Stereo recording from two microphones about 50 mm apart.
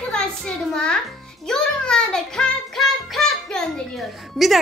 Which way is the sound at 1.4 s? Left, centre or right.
Centre.